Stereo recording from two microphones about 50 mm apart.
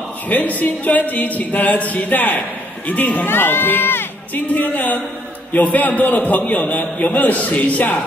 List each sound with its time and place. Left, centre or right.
0.3 s speech: left